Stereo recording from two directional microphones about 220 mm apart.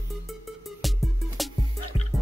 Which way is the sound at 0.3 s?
Centre (ahead or behind).